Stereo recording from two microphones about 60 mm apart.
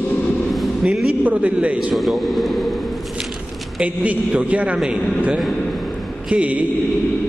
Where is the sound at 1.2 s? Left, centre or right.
Right.